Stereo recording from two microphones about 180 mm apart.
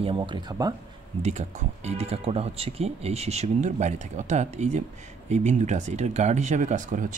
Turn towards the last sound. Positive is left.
turn(degrees=-45)  # may be behind; listen again after turning